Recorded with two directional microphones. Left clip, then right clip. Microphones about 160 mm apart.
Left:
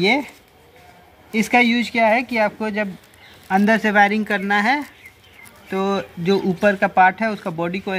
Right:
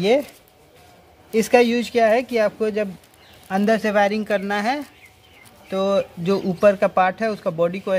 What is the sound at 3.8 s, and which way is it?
Speech, 10° right (ahead or behind).